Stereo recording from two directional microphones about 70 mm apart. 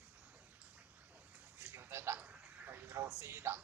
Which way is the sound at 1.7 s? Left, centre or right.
Right.